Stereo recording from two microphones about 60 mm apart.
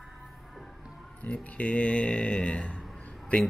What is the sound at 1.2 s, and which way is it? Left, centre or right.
Speech, left.